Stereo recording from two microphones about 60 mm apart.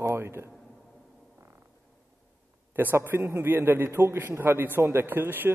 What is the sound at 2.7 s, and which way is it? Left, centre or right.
A man's voice, right.